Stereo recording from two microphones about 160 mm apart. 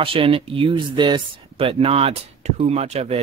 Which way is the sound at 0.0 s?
35° right (ahead or behind).